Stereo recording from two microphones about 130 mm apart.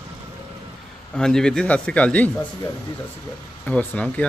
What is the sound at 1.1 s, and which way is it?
Speech, 5° left (ahead or behind).